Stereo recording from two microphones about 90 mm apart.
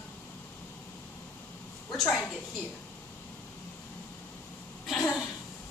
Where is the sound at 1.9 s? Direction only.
5° left (ahead or behind).